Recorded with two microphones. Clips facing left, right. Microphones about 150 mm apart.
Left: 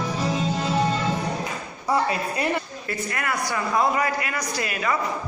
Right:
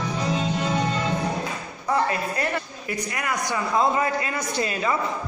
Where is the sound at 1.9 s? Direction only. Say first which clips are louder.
Even; 10° left (ahead or behind).